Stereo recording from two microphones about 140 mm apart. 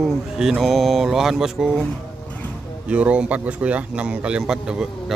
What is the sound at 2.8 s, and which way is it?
Speech, 10° right (ahead or behind).